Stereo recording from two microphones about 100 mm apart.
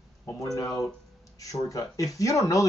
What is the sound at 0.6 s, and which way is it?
Speech, 35° left (ahead or behind).